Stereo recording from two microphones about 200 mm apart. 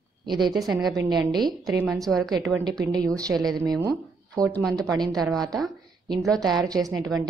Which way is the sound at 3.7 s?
20° right (ahead or behind).